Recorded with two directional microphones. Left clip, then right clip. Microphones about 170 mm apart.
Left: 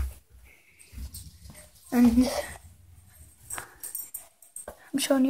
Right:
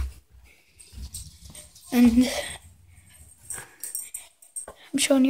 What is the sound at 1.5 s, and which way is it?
Horse, 50° left (ahead or behind).